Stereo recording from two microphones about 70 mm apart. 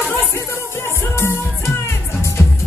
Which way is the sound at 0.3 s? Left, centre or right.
Left.